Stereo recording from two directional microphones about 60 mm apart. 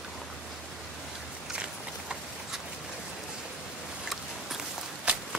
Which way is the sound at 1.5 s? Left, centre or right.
Centre.